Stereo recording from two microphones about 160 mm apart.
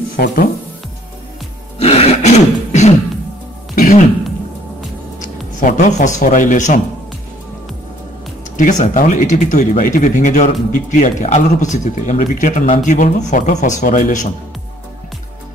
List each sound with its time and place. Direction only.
0.1 s speech: 70° left (ahead or behind)
1.8 s throat clearing: 40° left (ahead or behind)
3.7 s music: 55° left (ahead or behind)
5.2 s speech: 50° left (ahead or behind)
8.5 s speech: 50° left (ahead or behind)